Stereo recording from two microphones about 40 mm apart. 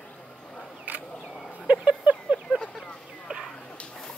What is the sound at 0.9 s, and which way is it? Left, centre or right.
Single-lens reflex camera, right.